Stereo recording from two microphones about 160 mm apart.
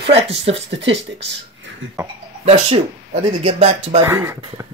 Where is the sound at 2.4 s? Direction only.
35° right (ahead or behind).